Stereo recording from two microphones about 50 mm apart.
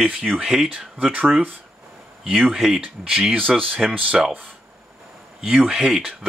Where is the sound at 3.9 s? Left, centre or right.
Right.